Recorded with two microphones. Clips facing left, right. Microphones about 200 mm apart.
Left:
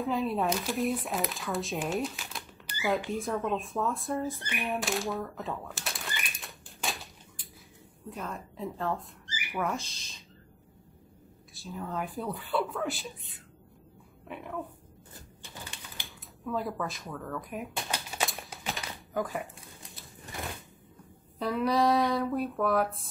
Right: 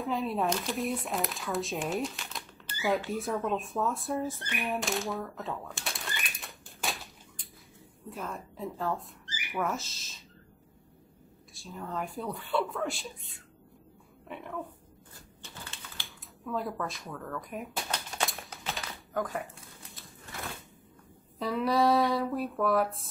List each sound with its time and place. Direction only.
0.0 s a woman's voice: centre (ahead or behind)
2.7 s a sound: 15° left (ahead or behind)
3.1 s a woman's voice: centre (ahead or behind)
3.7 s a sound: centre (ahead or behind)
8.1 s a woman's voice: centre (ahead or behind)
11.5 s a woman's voice: centre (ahead or behind)
16.0 s typewriter: 15° left (ahead or behind)
16.4 s speech: centre (ahead or behind)
18.8 s typewriter: centre (ahead or behind)
21.4 s a woman's voice: centre (ahead or behind)